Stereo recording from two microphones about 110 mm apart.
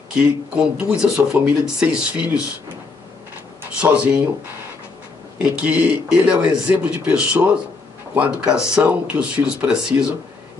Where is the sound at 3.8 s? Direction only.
10° right (ahead or behind).